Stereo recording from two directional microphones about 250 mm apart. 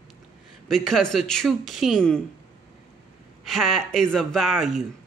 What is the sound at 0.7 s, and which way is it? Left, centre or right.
Speech, centre.